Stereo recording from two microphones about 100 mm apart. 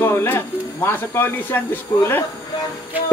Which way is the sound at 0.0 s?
25° left (ahead or behind).